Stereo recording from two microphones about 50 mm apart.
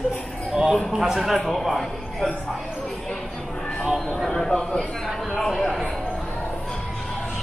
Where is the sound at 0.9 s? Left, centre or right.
Centre.